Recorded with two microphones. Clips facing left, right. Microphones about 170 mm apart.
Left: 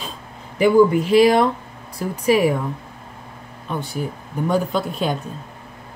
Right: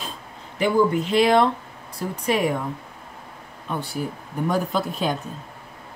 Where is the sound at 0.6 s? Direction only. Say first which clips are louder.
Left 6 dB; 10° left (ahead or behind).